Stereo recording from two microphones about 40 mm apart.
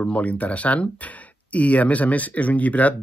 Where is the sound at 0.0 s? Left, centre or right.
Left.